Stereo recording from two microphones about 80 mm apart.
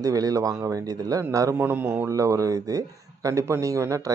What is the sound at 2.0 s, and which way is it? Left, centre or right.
Speech, right.